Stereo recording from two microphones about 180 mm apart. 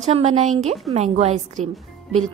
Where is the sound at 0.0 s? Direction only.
35° right (ahead or behind).